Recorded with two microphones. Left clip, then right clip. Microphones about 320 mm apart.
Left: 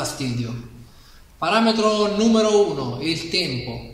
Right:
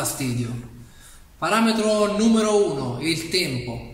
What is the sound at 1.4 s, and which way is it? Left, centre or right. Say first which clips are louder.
Speech: left 2 dB; centre.